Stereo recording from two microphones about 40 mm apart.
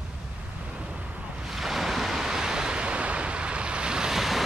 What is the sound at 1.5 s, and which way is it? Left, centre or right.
Waves, centre.